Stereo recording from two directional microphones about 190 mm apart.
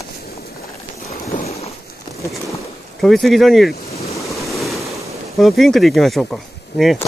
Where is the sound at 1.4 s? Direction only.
35° left (ahead or behind).